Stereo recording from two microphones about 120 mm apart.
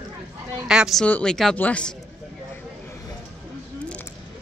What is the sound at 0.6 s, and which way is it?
Speech, 5° right (ahead or behind).